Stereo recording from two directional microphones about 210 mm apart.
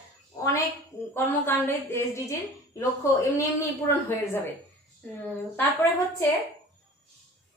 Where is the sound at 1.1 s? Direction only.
10° left (ahead or behind).